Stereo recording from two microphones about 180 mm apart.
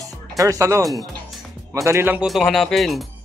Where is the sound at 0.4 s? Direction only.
20° right (ahead or behind).